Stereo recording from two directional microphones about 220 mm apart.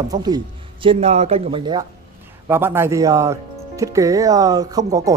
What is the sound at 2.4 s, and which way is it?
Speech, 10° right (ahead or behind).